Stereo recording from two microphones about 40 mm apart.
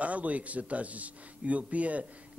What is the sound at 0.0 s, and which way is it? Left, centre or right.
A man's voice, right.